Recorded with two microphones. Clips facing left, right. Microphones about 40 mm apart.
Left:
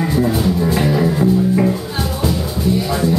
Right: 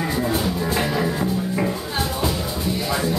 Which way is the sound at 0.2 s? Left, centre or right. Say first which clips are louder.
Left 8 dB; centre.